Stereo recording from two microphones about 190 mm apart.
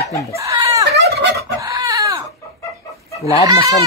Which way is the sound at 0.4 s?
15° right (ahead or behind).